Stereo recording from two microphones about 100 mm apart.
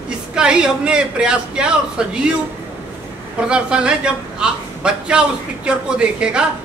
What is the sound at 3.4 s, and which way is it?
A man's voice, 10° right (ahead or behind).